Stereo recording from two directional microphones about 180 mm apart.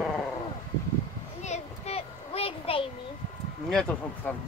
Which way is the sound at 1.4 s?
35° left (ahead or behind).